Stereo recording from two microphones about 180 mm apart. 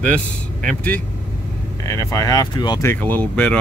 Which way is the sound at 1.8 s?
15° left (ahead or behind).